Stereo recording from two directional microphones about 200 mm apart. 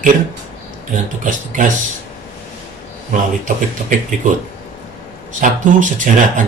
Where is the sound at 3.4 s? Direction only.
40° right (ahead or behind).